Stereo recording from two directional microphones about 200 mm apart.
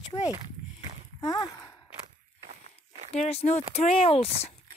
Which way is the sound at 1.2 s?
20° left (ahead or behind).